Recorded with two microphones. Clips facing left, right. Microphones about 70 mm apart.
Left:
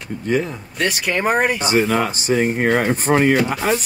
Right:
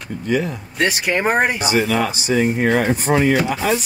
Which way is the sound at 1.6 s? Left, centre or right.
Left.